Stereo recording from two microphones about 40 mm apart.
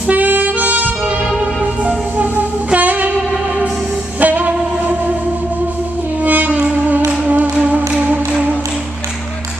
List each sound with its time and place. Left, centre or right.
0.1 s saxophone: right
2.7 s music: right
4.2 s music: right
6.2 s music: right